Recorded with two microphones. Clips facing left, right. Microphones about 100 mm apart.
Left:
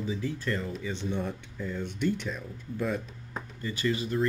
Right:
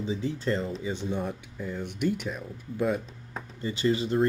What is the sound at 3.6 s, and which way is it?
Speech, 25° right (ahead or behind).